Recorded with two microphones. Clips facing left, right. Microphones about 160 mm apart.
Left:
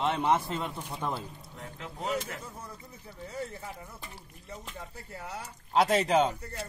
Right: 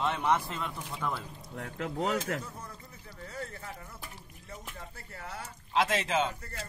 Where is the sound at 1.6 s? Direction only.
75° right (ahead or behind).